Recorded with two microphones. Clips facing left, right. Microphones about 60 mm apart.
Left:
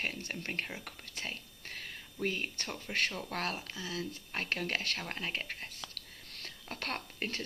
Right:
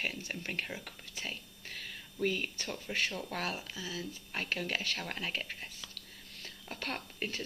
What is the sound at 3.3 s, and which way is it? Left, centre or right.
Speech, left.